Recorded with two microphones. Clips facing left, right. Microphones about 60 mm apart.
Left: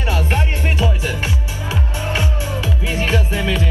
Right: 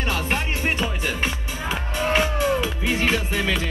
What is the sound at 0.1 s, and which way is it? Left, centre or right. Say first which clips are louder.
Music: left 6 dB; centre.